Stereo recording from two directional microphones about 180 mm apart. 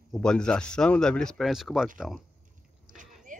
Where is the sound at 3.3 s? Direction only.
45° right (ahead or behind).